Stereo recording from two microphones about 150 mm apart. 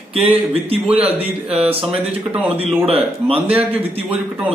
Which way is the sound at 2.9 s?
40° right (ahead or behind).